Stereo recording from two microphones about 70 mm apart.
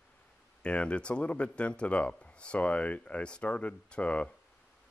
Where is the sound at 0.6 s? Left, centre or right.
Centre.